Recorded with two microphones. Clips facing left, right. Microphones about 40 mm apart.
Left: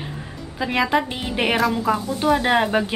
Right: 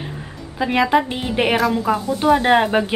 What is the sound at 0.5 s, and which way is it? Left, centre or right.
A woman's voice, centre.